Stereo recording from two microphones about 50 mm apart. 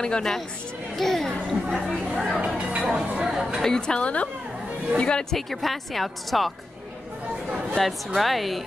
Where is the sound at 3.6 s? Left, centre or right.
Centre.